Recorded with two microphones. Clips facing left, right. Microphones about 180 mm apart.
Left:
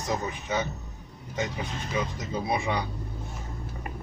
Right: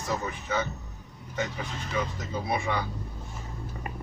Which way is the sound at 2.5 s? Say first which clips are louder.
Left 1 dB; 20° left (ahead or behind).